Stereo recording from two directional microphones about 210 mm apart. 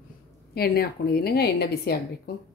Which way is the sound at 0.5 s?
45° left (ahead or behind).